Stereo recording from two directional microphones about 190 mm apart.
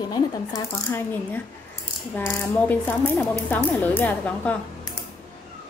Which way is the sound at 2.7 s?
10° left (ahead or behind).